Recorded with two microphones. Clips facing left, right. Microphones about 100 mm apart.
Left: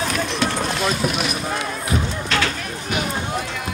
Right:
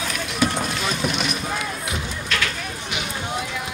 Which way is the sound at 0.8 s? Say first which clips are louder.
Left 4 dB; centre (ahead or behind).